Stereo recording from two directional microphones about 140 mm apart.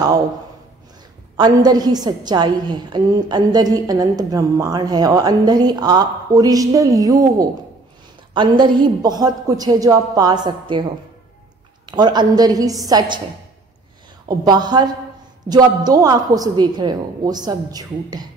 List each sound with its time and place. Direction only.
1.3 s a woman's voice: 30° right (ahead or behind)
14.2 s a woman's voice: 30° right (ahead or behind)